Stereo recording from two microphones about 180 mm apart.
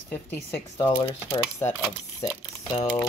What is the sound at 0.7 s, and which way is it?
Speech, 25° left (ahead or behind).